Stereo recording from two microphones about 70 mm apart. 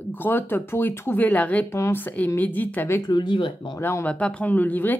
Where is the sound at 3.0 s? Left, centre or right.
Left.